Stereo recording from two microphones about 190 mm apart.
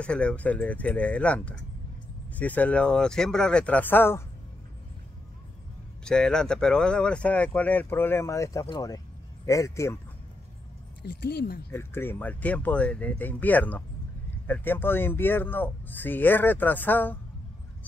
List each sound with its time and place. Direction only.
0.0 s speech: 5° left (ahead or behind)
6.0 s speech: 5° left (ahead or behind)
11.0 s speech: 60° left (ahead or behind)
11.7 s speech: 10° left (ahead or behind)